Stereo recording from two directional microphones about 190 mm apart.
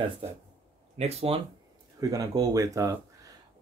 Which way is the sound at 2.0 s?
20° right (ahead or behind).